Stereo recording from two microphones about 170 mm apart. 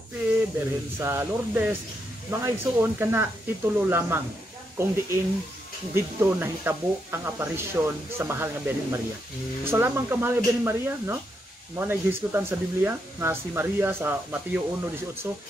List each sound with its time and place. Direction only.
0.9 s speech: 15° right (ahead or behind)